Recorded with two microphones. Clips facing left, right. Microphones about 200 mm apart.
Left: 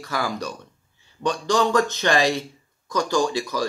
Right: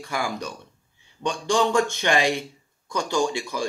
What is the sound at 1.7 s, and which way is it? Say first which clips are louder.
Speech: left 1 dB; 15° right (ahead or behind).